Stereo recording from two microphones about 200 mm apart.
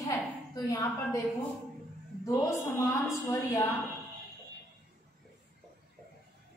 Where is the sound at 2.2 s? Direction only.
15° left (ahead or behind).